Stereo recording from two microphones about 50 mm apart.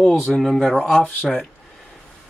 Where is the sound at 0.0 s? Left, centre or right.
Left.